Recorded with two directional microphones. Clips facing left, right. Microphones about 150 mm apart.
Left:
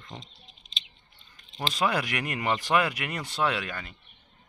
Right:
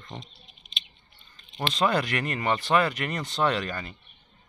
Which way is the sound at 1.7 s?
10° left (ahead or behind).